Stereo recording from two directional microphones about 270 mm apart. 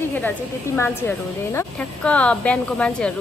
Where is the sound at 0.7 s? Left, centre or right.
Centre.